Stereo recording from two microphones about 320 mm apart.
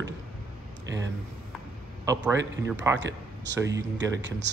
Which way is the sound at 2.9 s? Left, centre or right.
Right.